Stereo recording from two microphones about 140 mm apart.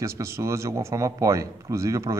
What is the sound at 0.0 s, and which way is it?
Speech, 20° right (ahead or behind).